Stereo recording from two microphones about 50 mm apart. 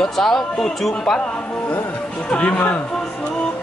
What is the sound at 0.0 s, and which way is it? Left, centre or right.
Speech, centre.